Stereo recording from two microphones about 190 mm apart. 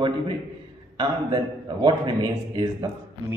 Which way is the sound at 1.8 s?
20° right (ahead or behind).